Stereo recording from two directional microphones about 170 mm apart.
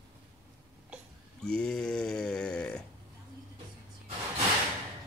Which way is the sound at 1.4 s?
5° left (ahead or behind).